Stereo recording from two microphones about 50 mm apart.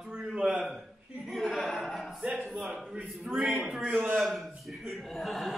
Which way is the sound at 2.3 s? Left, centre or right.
Centre.